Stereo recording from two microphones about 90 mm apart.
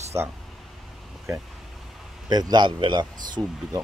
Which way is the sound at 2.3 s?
50° right (ahead or behind).